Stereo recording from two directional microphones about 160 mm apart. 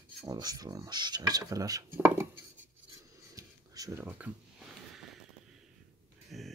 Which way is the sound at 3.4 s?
20° right (ahead or behind).